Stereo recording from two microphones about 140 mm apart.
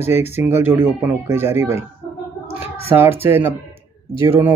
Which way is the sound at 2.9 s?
15° right (ahead or behind).